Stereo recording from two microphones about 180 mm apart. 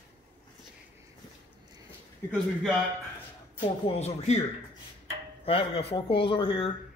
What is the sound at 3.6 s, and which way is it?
Speech, 35° left (ahead or behind).